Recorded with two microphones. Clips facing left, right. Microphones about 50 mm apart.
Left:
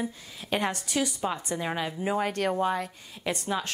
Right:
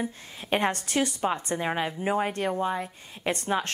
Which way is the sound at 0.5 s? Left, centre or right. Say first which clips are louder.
Right 3 dB; right.